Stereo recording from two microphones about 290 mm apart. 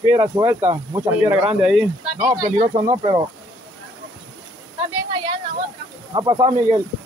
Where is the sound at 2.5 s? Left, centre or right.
Right.